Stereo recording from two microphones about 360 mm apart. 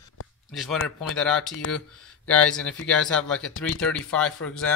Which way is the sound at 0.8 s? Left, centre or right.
Centre.